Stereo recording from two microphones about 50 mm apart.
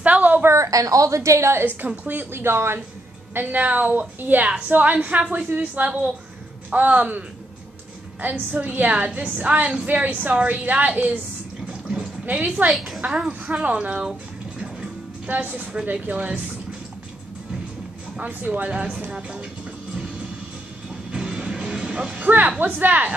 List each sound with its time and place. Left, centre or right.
0.0 s a sound: right
0.5 s a woman's voice: right
2.0 s speech: right
3.3 s a woman's voice: right
12.3 s a woman's voice: right
12.6 s a woman's voice: centre
13.0 s speech: centre
13.3 s speech: right
15.2 s a woman's voice: right
18.2 s a woman's voice: right
18.7 s speech: centre
21.1 s music: centre
22.6 s a woman's voice: right